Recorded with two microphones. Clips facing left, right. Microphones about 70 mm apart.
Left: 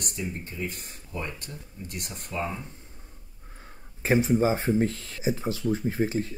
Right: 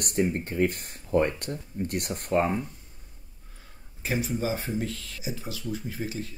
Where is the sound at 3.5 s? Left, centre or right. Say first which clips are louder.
Left 6 dB; left.